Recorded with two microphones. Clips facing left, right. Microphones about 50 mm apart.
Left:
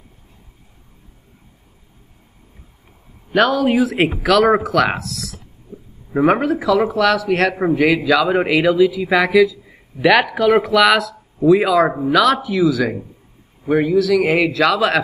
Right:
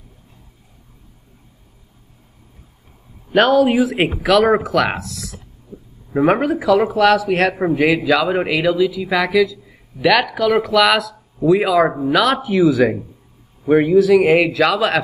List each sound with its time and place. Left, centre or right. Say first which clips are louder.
3.5 s speech: right 2 dB; centre
5.7 s a sound: even; left
6.1 s speech: even; centre
8.3 s speech: left 2 dB; centre; by 14.2 s right
14.2 s a man's voice: right 2 dB; centre